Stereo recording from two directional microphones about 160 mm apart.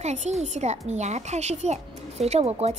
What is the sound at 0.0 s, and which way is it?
A child's voice, 45° right (ahead or behind).